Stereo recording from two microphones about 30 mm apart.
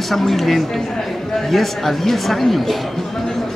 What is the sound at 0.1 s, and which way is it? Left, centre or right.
Speech, centre.